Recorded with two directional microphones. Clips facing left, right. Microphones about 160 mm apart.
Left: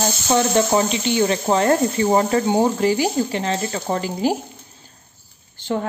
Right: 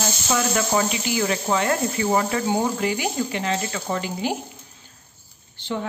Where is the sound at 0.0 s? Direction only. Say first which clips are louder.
Left 5 dB; 30° left (ahead or behind).